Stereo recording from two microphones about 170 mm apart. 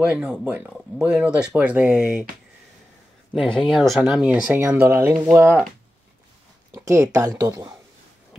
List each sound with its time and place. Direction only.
0.0 s speech: 5° right (ahead or behind)
3.3 s speech: centre (ahead or behind); by 5.6 s 15° right (ahead or behind)
6.7 s speech: 15° right (ahead or behind)